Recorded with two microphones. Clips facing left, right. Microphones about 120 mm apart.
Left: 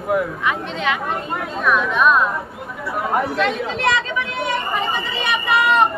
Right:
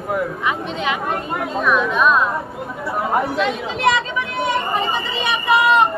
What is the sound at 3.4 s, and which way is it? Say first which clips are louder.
Speech: even; 5° right (ahead or behind).